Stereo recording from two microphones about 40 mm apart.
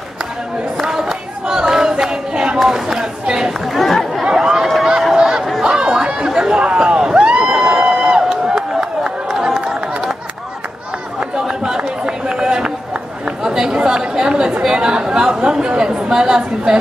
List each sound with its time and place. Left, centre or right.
0.7 s a sound: centre
2.6 s speech: centre
3.6 s chatter: centre
4.3 s a sound: centre
5.6 s chatter: centre
6.6 s crowd: right
9.5 s run: centre
11.1 s run: centre
14.6 s a woman's voice: centre